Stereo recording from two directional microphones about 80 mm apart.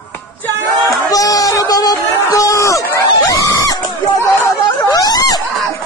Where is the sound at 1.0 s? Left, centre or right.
Left.